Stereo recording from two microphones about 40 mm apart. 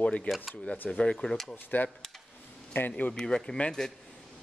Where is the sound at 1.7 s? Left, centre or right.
Left.